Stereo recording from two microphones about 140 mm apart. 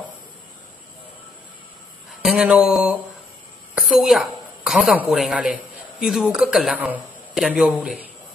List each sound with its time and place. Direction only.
2.2 s speech: 10° right (ahead or behind)
3.7 s a sound: 5° right (ahead or behind)
5.0 s a man's voice: centre (ahead or behind)